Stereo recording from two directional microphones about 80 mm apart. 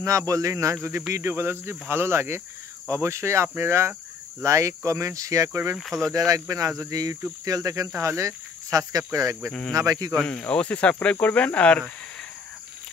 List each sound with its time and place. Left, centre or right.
0.3 s speech: right
5.8 s speech: centre
6.1 s speech: right
9.5 s speech: centre
9.8 s speech: right
10.1 s speech: centre